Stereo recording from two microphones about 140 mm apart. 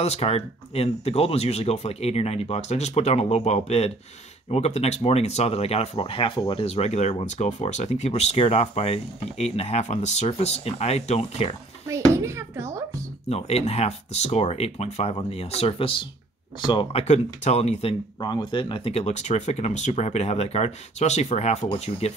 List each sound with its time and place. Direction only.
0.0 s speech: 50° left (ahead or behind)
12.1 s a child's voice: 20° right (ahead or behind)
13.3 s speech: 50° left (ahead or behind); by 16.8 s 30° left (ahead or behind)
16.9 s speech: 55° left (ahead or behind)
18.2 s speech: 30° left (ahead or behind); by 22.1 s 50° left (ahead or behind)